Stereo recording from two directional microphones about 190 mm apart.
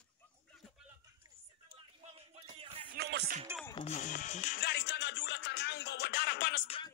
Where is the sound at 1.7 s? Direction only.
30° right (ahead or behind).